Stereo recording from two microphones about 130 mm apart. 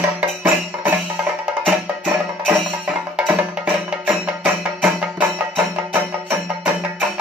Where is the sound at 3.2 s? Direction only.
10° right (ahead or behind).